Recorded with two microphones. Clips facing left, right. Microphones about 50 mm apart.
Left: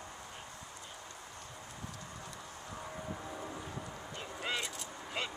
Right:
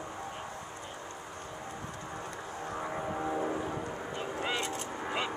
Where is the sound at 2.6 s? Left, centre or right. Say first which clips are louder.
Right 9 dB; right.